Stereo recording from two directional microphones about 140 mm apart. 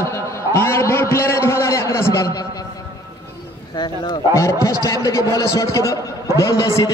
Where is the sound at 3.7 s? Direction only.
30° left (ahead or behind).